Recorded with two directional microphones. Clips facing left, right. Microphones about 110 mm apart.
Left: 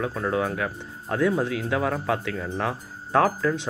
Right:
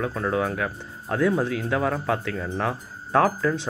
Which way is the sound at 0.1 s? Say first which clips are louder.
Right 1 dB; 5° left (ahead or behind).